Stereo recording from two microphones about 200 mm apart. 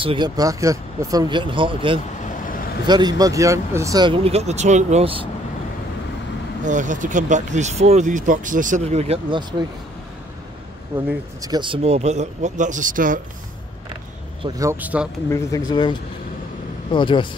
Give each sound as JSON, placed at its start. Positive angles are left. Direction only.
{"t": 0.0, "sound": "speech", "side_deg": -25}
{"t": 6.6, "sound": "speech", "side_deg": -40}
{"t": 11.4, "sound": "speech", "side_deg": -20}
{"t": 14.4, "sound": "a man's voice", "side_deg": -15}
{"t": 15.2, "sound": "speech", "side_deg": 15}